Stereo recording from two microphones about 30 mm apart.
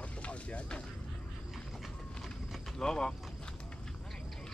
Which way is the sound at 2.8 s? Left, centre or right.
Left.